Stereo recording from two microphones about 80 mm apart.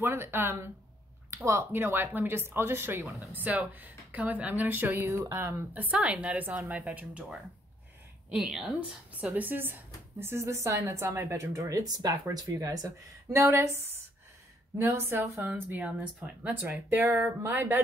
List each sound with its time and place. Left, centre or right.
0.0 s speech: right
1.7 s speech: right
8.3 s a woman's voice: centre
9.2 s a woman's voice: centre; by 13.7 s right
14.8 s speech: right
15.8 s speech: centre